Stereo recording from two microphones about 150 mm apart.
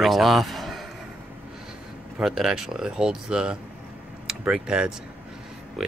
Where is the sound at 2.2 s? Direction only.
5° right (ahead or behind).